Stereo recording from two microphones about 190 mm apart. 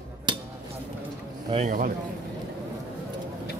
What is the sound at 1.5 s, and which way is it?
Speech, 40° right (ahead or behind).